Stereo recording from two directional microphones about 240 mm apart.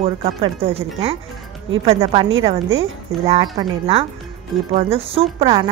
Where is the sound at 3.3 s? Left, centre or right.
Right.